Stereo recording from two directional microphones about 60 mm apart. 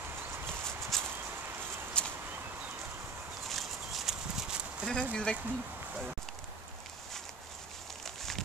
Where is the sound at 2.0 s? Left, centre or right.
Centre.